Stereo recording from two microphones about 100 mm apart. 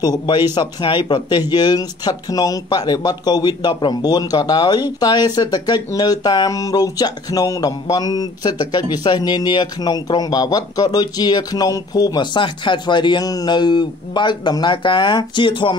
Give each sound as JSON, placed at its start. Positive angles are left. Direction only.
{"t": 0.0, "sound": "speech", "side_deg": 45}
{"t": 12.4, "sound": "speech", "side_deg": 50}